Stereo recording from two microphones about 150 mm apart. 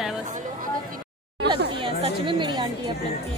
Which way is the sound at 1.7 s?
35° right (ahead or behind).